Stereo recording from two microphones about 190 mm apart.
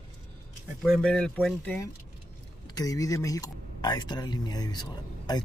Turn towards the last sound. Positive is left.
turn(degrees=20)  # may be behind; listen again after turning